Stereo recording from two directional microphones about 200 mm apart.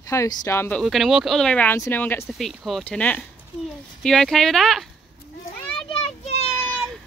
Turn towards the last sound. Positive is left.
turn(degrees=5)  # may be behind; listen again after turning